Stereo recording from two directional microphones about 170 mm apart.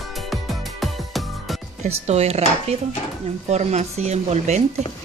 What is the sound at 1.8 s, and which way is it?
A woman's voice, 40° right (ahead or behind).